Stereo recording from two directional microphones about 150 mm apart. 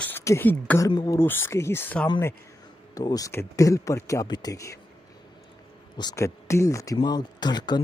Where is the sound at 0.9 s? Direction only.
30° left (ahead or behind).